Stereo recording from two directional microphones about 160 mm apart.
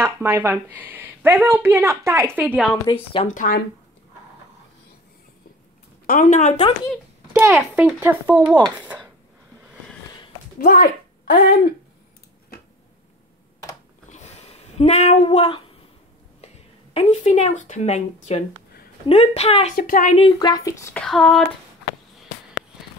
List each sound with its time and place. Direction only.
0.0 s a woman's voice: 15° right (ahead or behind)
2.9 s a woman's voice: 30° left (ahead or behind)
3.3 s speech: 55° left (ahead or behind)
6.0 s speech: 55° left (ahead or behind)
7.3 s a woman's voice: 10° right (ahead or behind)
10.6 s speech: 65° left (ahead or behind)
14.1 s a sound: 45° left (ahead or behind)
16.9 s a woman's voice: 45° left (ahead or behind)
19.8 s speech: 60° left (ahead or behind)
20.2 s a woman's voice: 30° left (ahead or behind)
20.9 s a sound: 5° left (ahead or behind)